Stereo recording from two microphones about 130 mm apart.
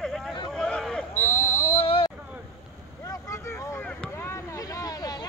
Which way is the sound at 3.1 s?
25° left (ahead or behind).